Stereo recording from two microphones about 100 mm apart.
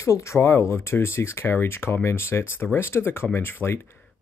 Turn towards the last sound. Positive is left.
turn(degrees=25)  # may be behind; listen again after turning